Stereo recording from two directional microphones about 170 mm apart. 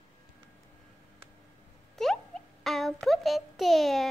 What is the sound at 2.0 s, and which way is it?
A child's voice, centre (ahead or behind).